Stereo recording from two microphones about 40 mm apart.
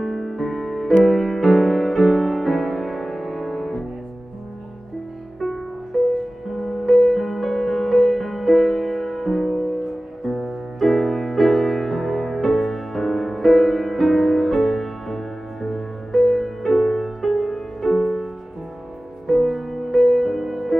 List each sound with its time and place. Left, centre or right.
0.0 s music: centre
5.9 s music: centre
6.5 s music: centre